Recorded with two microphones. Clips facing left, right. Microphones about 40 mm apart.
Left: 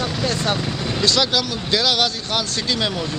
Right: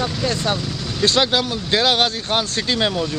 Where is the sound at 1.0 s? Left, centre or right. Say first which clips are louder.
Right 3 dB; right.